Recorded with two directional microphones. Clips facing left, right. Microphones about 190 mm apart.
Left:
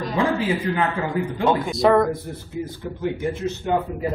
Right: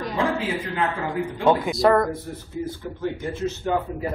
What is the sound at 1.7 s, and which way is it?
Speech, centre (ahead or behind).